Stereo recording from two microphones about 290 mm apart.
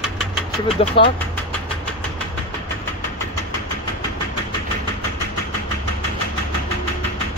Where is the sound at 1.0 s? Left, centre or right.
Centre.